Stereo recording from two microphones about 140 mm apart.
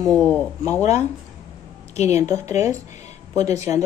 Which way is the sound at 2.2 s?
20° right (ahead or behind).